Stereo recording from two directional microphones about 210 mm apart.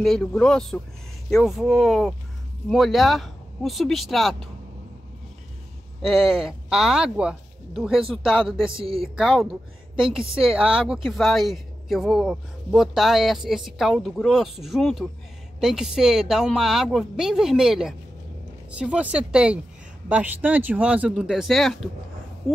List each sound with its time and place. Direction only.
0.0 s a man's voice: centre (ahead or behind)
6.0 s a man's voice: centre (ahead or behind)
8.7 s speech: 25° right (ahead or behind)
9.0 s a man's voice: centre (ahead or behind)